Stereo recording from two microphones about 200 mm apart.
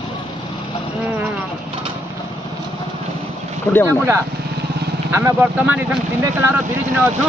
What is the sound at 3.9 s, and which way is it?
Speech, 10° right (ahead or behind).